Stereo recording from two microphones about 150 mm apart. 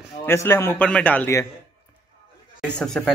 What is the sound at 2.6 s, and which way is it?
Speech, 5° left (ahead or behind).